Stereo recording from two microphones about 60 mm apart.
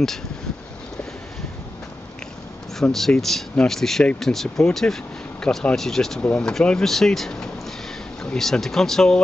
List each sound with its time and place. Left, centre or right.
2.8 s speech: centre